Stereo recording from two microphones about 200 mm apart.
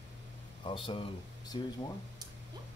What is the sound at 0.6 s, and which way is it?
Speech, 25° left (ahead or behind).